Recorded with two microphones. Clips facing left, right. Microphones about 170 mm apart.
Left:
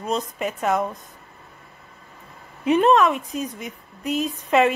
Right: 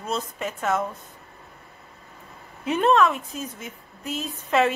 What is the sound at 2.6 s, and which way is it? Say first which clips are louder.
Speech: left 3 dB; 10° left (ahead or behind).